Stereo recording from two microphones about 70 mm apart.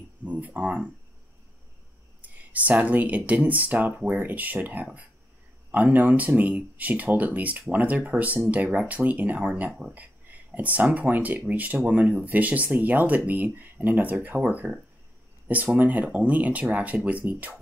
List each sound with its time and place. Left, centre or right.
0.2 s speech: right
2.2 s speech: right
9.9 s speech: right